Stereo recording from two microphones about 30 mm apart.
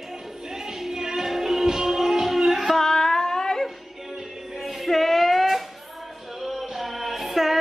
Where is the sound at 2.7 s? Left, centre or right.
Centre.